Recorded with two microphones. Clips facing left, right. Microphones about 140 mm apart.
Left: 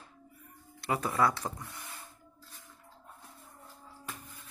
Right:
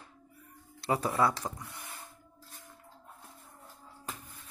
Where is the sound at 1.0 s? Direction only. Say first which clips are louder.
Even; 10° right (ahead or behind).